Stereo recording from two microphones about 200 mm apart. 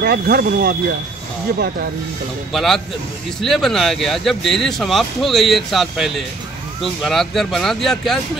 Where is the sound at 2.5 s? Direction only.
Centre (ahead or behind).